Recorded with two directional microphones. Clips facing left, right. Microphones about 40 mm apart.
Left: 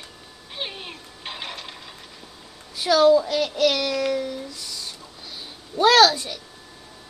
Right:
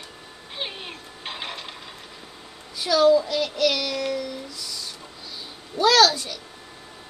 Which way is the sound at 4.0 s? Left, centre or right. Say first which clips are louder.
Left 3 dB; left.